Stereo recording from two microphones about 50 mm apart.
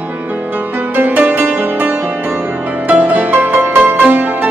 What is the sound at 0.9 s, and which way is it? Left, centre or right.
Music, right.